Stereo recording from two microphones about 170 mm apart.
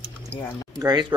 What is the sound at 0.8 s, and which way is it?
Speech, 25° right (ahead or behind).